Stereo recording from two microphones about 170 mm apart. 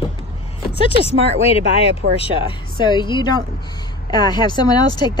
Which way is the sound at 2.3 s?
25° left (ahead or behind).